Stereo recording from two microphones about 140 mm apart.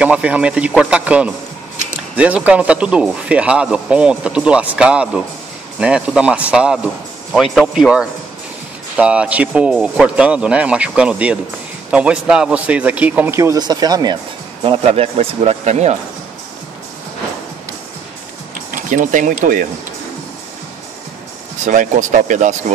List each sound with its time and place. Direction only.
0.0 s speech: 10° right (ahead or behind); by 14.1 s 30° right (ahead or behind)
14.6 s a man's voice: 45° right (ahead or behind)
18.9 s speech: 65° right (ahead or behind)
21.6 s speech: 65° right (ahead or behind)